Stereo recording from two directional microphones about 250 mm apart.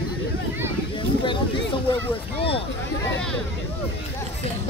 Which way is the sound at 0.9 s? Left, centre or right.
Centre.